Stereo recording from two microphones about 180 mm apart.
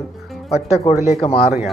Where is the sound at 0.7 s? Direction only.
35° left (ahead or behind).